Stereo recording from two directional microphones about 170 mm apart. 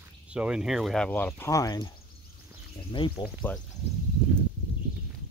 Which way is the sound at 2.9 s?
30° left (ahead or behind).